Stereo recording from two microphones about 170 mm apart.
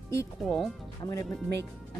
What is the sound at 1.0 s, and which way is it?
Speech, 20° left (ahead or behind).